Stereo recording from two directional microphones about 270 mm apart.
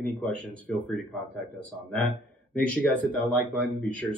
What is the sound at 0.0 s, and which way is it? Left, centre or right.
Speech, centre.